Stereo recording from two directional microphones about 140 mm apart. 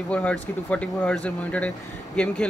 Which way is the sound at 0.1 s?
10° left (ahead or behind).